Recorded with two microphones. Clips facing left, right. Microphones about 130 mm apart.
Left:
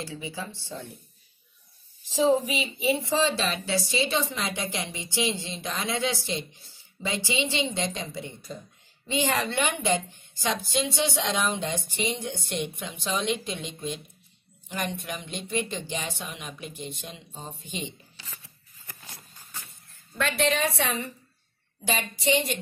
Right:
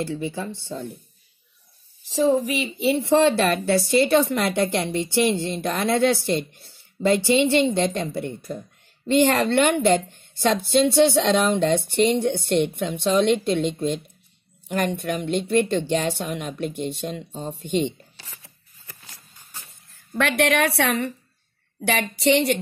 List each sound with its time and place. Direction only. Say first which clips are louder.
0.0 s a woman's voice: right 8 dB; 60° right (ahead or behind)
2.0 s a woman's voice: right 3 dB; 65° right (ahead or behind)
19.9 s a woman's voice: right 6 dB; 75° right (ahead or behind)
21.8 s a sound: right 6 dB; 75° right (ahead or behind)